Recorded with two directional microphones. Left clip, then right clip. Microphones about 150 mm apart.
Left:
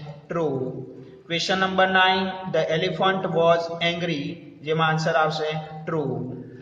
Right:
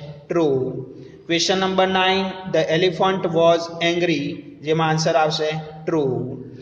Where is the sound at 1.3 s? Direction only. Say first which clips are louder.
Right 4 dB; 15° right (ahead or behind).